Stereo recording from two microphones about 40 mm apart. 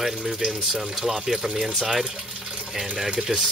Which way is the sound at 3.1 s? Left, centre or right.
Centre.